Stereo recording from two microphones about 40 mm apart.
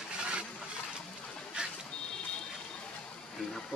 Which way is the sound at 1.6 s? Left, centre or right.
Right.